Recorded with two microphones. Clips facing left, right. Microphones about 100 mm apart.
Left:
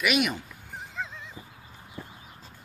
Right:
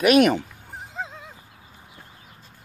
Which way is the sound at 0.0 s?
45° right (ahead or behind).